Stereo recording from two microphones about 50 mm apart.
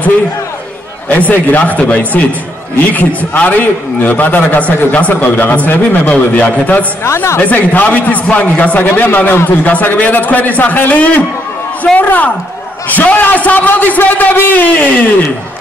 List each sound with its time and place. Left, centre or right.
1.1 s a man's voice: left